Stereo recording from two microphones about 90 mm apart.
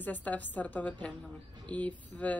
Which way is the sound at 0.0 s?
20° left (ahead or behind).